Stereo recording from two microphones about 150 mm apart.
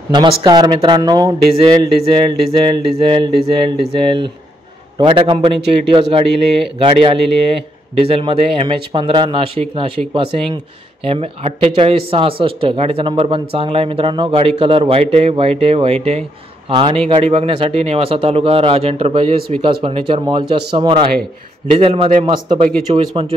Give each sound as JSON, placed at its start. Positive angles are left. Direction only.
{"t": 0.1, "sound": "speech", "side_deg": -30}
{"t": 22.2, "sound": "speech", "side_deg": -30}